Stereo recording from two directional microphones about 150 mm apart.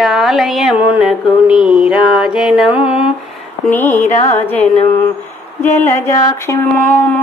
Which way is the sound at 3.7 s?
15° left (ahead or behind).